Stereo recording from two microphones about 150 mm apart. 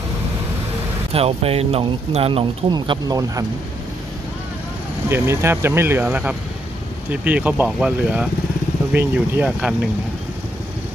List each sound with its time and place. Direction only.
1.1 s speech: 40° right (ahead or behind); by 3.4 s 25° right (ahead or behind)
5.1 s speech: 20° right (ahead or behind)